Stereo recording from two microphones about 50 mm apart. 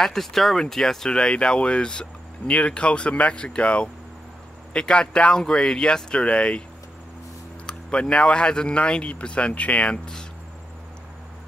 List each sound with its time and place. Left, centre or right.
0.0 s speech: centre
7.6 s speech: centre